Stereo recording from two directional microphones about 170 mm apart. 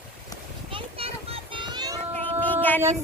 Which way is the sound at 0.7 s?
35° right (ahead or behind).